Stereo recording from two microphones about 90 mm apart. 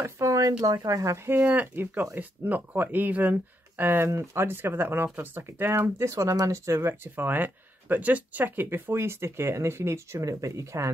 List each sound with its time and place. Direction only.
0.0 s speech: 35° right (ahead or behind)